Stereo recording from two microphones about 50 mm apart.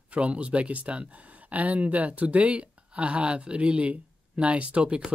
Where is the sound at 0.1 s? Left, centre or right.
Right.